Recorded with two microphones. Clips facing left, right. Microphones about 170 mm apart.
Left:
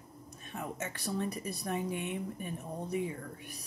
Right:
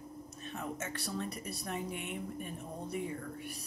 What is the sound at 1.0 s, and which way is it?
Speech, 15° left (ahead or behind).